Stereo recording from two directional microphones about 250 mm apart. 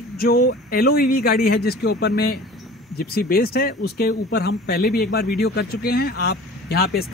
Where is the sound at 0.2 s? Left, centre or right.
Left.